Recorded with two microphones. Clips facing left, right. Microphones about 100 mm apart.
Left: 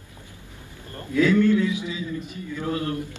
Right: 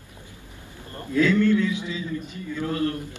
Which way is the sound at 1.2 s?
20° left (ahead or behind).